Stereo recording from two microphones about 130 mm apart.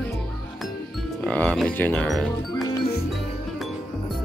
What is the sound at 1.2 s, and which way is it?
Speech, 10° left (ahead or behind).